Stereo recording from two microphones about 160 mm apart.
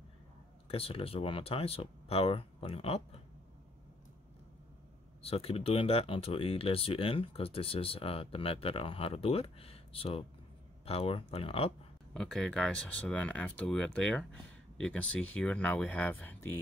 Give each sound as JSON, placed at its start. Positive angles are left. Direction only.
{"t": 0.7, "sound": "speech", "side_deg": 35}
{"t": 5.2, "sound": "speech", "side_deg": 40}
{"t": 12.1, "sound": "speech", "side_deg": 5}